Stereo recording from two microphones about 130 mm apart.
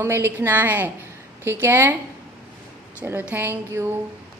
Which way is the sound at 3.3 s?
15° right (ahead or behind).